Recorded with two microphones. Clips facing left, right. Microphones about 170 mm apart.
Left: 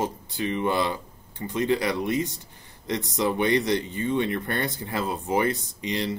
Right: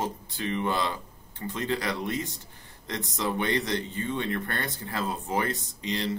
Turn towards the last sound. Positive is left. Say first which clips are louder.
# left 2 dB
turn(degrees=15)  # may be behind; listen again after turning